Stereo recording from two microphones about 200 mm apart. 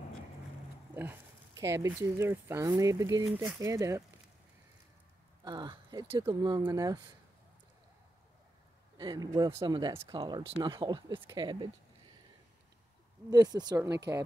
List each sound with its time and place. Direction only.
0.9 s speech: 15° right (ahead or behind)
5.4 s speech: 20° right (ahead or behind)
8.9 s speech: 20° right (ahead or behind)
13.3 s speech: 20° right (ahead or behind)